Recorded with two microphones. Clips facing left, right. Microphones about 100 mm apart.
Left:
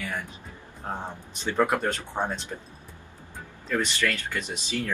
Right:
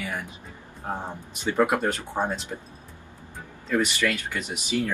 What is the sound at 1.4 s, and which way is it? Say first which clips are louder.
Speech: right 2 dB; 15° right (ahead or behind).